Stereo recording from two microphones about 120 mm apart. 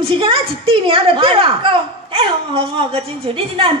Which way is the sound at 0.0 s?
50° right (ahead or behind).